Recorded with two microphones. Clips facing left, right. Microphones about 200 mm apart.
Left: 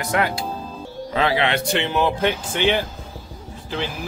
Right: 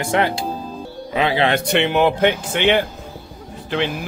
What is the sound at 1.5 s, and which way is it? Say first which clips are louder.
Speech: right 4 dB; 60° right (ahead or behind).